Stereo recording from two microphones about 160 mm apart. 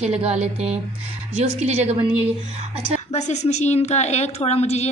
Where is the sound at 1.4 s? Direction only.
40° right (ahead or behind).